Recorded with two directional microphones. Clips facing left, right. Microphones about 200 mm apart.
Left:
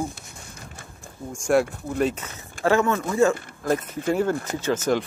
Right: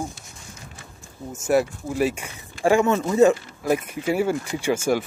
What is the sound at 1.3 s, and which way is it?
Speech, 5° right (ahead or behind).